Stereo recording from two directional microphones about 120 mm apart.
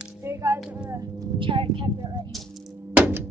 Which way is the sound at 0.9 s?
30° right (ahead or behind).